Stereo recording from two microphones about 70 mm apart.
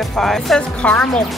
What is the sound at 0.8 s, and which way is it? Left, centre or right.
Speech, centre.